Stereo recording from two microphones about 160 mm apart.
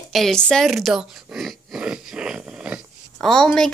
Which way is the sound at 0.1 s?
Centre (ahead or behind).